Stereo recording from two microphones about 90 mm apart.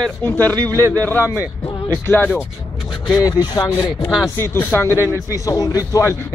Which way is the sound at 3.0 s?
40° left (ahead or behind).